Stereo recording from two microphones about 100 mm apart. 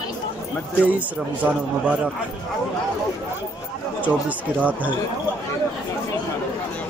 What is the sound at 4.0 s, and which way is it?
Speech, 15° right (ahead or behind).